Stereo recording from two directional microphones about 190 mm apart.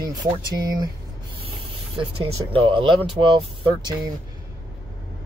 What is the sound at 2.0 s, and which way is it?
Speech, 25° right (ahead or behind).